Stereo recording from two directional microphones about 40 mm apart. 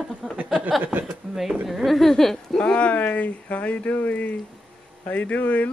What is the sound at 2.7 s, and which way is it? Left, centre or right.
Speech, left.